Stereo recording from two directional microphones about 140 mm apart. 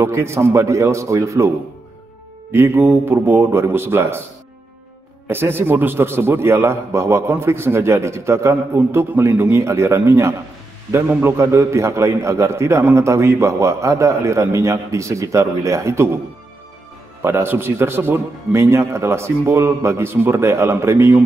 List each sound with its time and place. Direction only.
0.0 s a man's voice: 20° right (ahead or behind)
2.5 s a man's voice: 15° right (ahead or behind)
5.3 s a man's voice: 15° right (ahead or behind)
17.2 s a man's voice: 15° right (ahead or behind)